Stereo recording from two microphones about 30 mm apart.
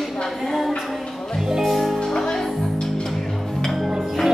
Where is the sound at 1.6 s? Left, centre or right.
Centre.